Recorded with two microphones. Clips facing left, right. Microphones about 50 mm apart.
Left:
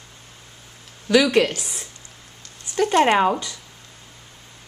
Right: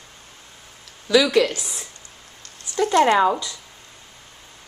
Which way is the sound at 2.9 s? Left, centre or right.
Left.